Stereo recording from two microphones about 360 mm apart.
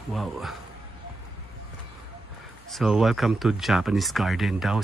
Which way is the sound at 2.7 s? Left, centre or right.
Centre.